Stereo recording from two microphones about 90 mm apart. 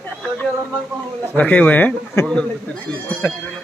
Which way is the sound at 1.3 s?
15° left (ahead or behind).